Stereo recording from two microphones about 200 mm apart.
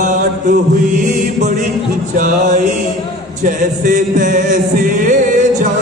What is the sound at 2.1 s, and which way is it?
Music, 40° right (ahead or behind).